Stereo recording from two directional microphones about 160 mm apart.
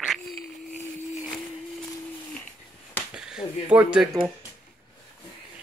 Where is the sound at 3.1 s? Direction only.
5° right (ahead or behind).